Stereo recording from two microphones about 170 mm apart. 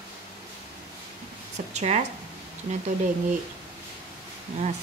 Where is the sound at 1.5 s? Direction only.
40° right (ahead or behind).